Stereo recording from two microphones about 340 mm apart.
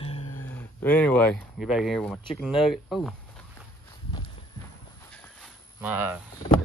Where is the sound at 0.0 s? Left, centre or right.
Centre.